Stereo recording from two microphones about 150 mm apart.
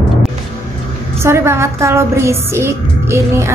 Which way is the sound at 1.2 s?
15° right (ahead or behind).